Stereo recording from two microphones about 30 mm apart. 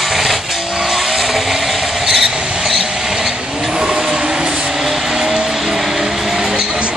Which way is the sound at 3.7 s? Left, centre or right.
Centre.